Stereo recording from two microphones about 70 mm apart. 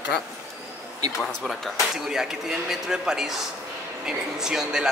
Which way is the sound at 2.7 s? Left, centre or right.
Centre.